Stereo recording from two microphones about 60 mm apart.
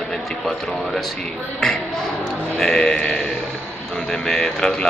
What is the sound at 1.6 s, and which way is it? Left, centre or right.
Speech, centre.